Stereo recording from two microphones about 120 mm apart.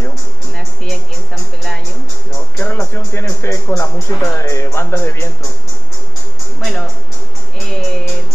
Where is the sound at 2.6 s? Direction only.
20° left (ahead or behind).